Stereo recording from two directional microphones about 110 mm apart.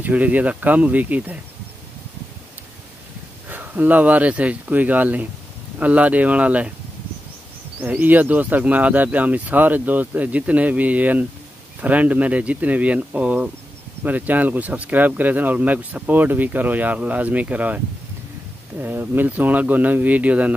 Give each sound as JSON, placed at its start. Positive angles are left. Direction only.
{"t": 0.0, "sound": "speech", "side_deg": -15}
{"t": 3.4, "sound": "speech", "side_deg": -15}
{"t": 7.8, "sound": "speech", "side_deg": -15}
{"t": 18.8, "sound": "speech", "side_deg": -20}